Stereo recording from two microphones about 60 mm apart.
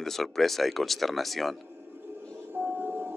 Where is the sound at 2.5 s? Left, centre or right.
Right.